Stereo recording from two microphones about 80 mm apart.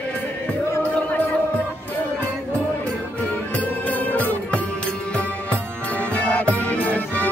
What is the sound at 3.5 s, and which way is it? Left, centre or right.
Music, centre.